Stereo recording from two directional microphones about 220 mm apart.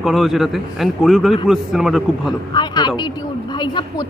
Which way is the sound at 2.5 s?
20° left (ahead or behind).